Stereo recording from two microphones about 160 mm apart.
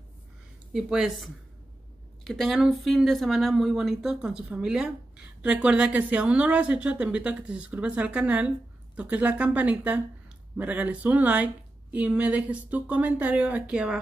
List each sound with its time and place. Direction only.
0.7 s a woman's voice: 5° right (ahead or behind)